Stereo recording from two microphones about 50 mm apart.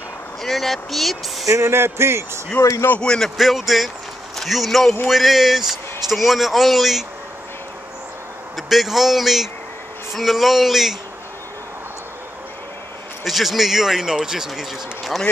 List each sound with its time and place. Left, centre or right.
0.4 s speech: centre
1.4 s speech: right
3.0 s speech: centre
3.3 s speech: centre
8.5 s speech: centre
13.2 s speech: centre